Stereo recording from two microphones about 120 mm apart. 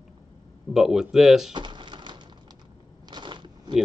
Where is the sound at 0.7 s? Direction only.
5° right (ahead or behind).